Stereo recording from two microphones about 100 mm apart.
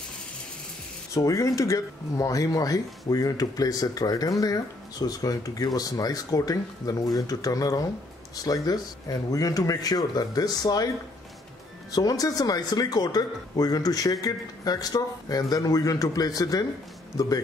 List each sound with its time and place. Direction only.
1.1 s speech: 35° left (ahead or behind)
11.9 s speech: 40° left (ahead or behind)